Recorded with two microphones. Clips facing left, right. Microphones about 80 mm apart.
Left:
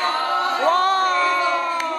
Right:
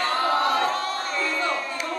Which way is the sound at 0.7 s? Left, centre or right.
Left.